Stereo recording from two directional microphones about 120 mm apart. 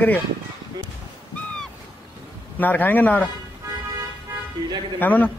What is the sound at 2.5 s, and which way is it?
Speech, 15° left (ahead or behind).